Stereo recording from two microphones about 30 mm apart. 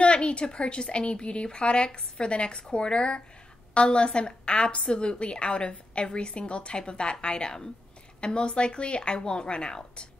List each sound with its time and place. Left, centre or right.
0.0 s a woman's voice: left